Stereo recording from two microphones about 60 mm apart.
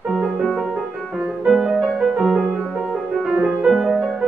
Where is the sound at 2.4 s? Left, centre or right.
Centre.